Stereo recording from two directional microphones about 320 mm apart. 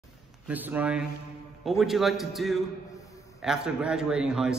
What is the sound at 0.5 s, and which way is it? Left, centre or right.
A man's voice, centre.